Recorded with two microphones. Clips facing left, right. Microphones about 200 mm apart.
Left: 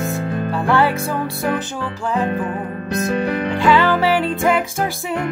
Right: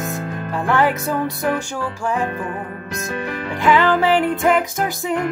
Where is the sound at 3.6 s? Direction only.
15° right (ahead or behind).